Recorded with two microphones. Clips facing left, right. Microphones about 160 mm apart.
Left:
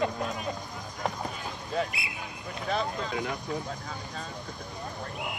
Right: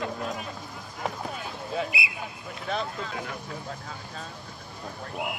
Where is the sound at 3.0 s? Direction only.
15° left (ahead or behind).